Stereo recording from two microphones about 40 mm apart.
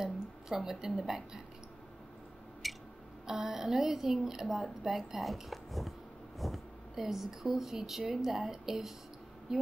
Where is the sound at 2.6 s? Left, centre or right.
Centre.